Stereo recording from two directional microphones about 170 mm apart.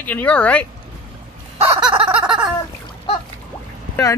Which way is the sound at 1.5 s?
35° right (ahead or behind).